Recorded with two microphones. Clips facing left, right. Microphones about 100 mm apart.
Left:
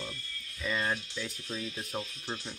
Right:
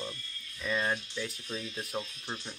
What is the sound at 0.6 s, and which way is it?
Speech, 5° right (ahead or behind).